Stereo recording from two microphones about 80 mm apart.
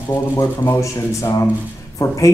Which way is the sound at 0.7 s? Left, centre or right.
Left.